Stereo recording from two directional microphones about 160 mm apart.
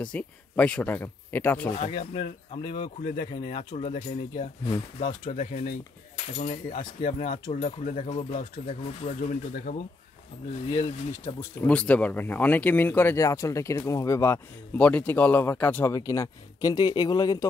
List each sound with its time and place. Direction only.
0.0 s speech: 5° left (ahead or behind)
1.8 s speech: 40° left (ahead or behind)
5.2 s speech: 55° left (ahead or behind)
9.7 s speech: 65° left (ahead or behind)
10.7 s speech: 35° left (ahead or behind)
11.5 s speech: 10° left (ahead or behind); by 17.5 s 25° left (ahead or behind)